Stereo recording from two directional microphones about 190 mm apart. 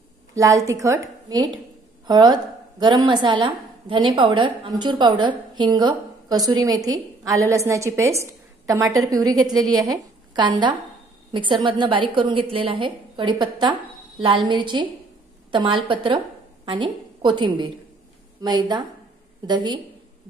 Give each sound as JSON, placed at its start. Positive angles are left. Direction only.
{"t": 0.3, "sound": "a woman's voice", "side_deg": -15}
{"t": 2.0, "sound": "a woman's voice", "side_deg": -20}